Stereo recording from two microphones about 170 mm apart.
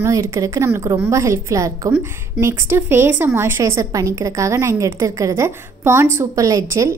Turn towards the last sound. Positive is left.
turn(degrees=-20)  # may be behind; listen again after turning